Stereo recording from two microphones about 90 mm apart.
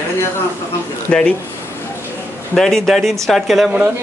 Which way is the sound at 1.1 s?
15° left (ahead or behind).